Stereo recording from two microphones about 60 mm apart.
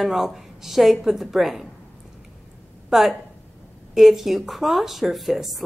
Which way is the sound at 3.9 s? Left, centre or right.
Centre.